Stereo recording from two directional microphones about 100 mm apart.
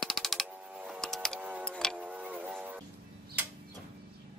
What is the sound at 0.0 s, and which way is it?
Mechanisms, centre (ahead or behind).